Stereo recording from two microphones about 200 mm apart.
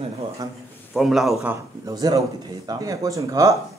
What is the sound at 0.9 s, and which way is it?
A man's voice, centre (ahead or behind).